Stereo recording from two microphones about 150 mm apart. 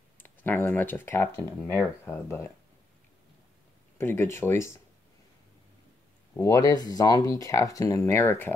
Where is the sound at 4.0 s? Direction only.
15° left (ahead or behind).